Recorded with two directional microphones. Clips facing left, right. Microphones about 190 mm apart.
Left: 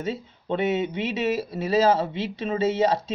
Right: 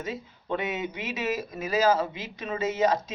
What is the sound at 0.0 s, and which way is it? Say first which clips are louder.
Speech: left 5 dB; 30° left (ahead or behind).